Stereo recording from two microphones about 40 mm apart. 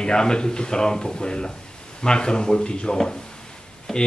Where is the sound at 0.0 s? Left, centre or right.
Left.